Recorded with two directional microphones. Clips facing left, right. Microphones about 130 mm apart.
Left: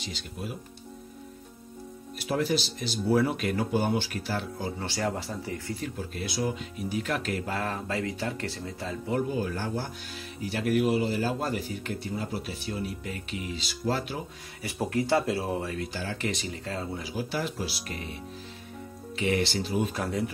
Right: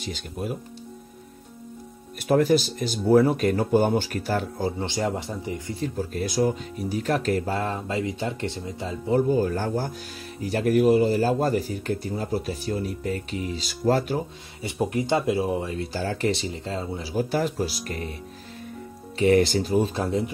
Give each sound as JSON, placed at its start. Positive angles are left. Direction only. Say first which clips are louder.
{"t": 0.0, "sound": "speech", "louder": "right 6 dB", "side_deg": -50}
{"t": 2.1, "sound": "speech", "louder": "right 8 dB", "side_deg": -50}
{"t": 4.7, "sound": "speech", "louder": "right 4 dB", "side_deg": -20}
{"t": 5.8, "sound": "speech", "louder": "right 7 dB", "side_deg": -40}
{"t": 9.3, "sound": "speech", "louder": "right 7 dB", "side_deg": -40}
{"t": 14.6, "sound": "speech", "louder": "right 3 dB", "side_deg": -20}
{"t": 17.1, "sound": "speech", "louder": "right 9 dB", "side_deg": -45}
{"t": 19.1, "sound": "speech", "louder": "right 8 dB", "side_deg": -40}
{"t": 19.8, "sound": "speech", "louder": "right 5 dB", "side_deg": -30}